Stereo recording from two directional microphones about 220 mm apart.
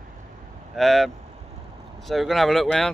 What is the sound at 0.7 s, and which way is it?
Speech, centre (ahead or behind).